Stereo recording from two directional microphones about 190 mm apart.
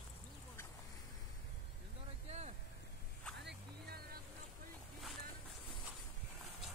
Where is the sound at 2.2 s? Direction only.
35° right (ahead or behind).